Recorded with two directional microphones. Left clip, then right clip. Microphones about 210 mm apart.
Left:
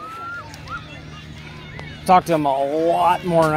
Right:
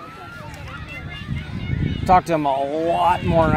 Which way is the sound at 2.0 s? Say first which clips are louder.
Left 1 dB; 20° left (ahead or behind).